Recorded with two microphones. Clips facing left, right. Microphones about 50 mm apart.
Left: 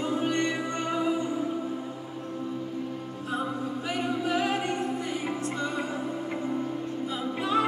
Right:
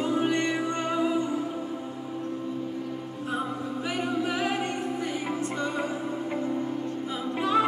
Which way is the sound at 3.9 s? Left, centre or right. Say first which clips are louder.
Even; centre.